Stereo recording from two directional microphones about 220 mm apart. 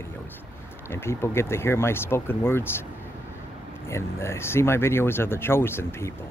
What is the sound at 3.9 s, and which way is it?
Speech, 10° left (ahead or behind).